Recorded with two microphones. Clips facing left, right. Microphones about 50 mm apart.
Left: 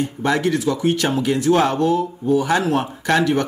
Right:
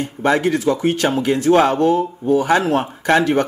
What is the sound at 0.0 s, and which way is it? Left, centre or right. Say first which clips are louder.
Speech: right 2 dB; right.